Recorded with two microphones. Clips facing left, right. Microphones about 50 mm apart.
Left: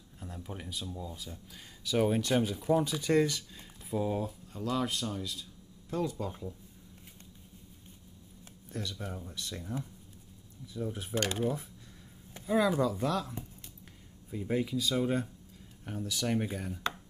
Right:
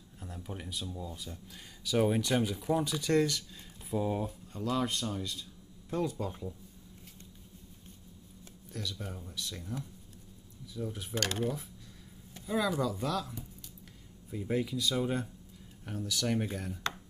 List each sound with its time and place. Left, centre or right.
0.2 s speech: centre
8.7 s speech: centre
11.3 s speech: centre
12.4 s speech: left
13.0 s speech: centre
14.3 s speech: centre